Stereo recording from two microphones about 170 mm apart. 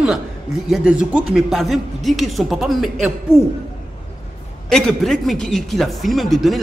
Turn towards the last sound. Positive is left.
turn(degrees=0)  # may be behind; listen again after turning